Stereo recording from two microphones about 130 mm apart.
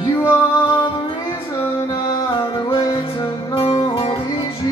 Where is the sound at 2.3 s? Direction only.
40° left (ahead or behind).